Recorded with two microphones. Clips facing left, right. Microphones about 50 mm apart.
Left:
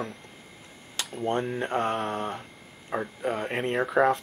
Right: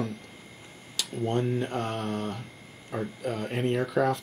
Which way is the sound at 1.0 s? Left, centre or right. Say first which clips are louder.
Left 1 dB; left.